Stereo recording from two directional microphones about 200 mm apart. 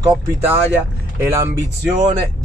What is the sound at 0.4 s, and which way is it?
Speech, 10° right (ahead or behind).